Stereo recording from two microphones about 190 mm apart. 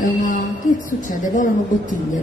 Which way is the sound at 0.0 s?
45° left (ahead or behind).